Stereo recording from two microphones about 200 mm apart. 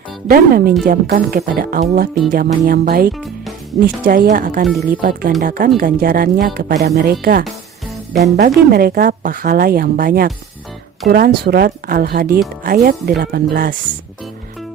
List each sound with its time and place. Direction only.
0.3 s speech: 50° right (ahead or behind)
4.6 s speech: centre (ahead or behind)
5.4 s speech: 45° right (ahead or behind)